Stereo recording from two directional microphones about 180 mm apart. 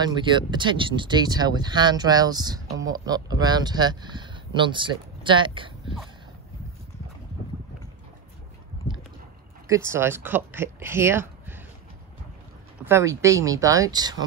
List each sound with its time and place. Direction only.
0.0 s speech: 25° right (ahead or behind)
9.8 s speech: 15° right (ahead or behind)
12.8 s speech: 15° right (ahead or behind)